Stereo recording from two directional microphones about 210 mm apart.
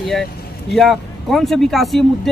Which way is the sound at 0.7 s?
Centre (ahead or behind).